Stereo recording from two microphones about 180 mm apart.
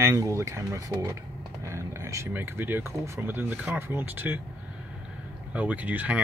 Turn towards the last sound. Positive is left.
turn(degrees=-10)  # may be behind; listen again after turning